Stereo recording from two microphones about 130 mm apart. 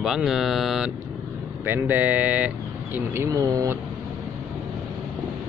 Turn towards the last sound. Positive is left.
turn(degrees=-25)  # may be behind; listen again after turning